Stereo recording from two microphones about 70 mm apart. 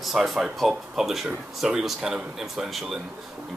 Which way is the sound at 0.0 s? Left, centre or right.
Centre.